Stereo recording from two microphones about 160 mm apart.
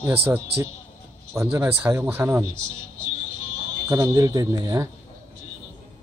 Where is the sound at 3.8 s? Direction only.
20° right (ahead or behind).